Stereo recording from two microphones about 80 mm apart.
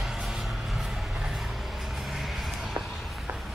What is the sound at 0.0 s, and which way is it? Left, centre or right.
Vehicle, centre.